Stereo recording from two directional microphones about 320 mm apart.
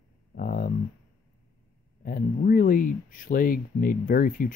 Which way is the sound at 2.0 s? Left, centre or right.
Left.